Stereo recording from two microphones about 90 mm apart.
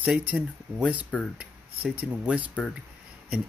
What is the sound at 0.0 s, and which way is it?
Speech, 15° right (ahead or behind).